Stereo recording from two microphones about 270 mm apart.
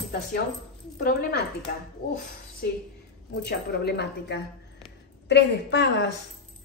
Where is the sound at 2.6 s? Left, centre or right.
Left.